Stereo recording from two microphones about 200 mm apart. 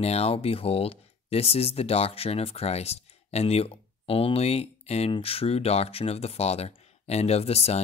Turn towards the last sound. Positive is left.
turn(degrees=30)  # may be behind; listen again after turning